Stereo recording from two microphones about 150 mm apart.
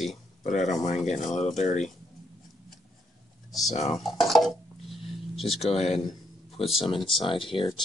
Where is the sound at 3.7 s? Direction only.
50° left (ahead or behind).